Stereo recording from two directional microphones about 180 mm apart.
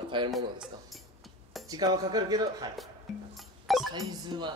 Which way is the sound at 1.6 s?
20° right (ahead or behind).